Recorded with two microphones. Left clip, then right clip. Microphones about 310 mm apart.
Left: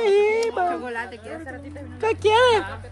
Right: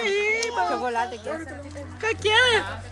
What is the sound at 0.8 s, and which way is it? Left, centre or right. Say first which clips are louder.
Speech: right 4 dB; centre.